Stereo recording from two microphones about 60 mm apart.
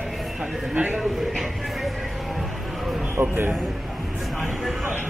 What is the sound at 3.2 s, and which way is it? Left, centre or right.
Speech, right.